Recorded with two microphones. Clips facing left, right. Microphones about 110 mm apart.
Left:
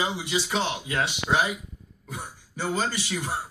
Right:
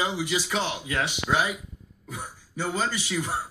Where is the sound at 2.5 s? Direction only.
35° left (ahead or behind).